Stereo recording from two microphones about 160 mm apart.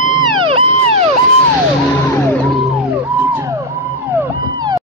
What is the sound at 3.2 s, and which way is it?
Music, 15° right (ahead or behind).